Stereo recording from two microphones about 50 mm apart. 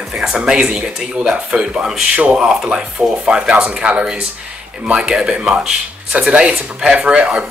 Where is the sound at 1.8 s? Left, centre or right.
Centre.